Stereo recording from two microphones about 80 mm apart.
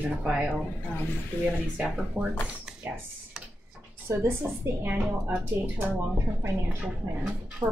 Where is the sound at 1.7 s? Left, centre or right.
Centre.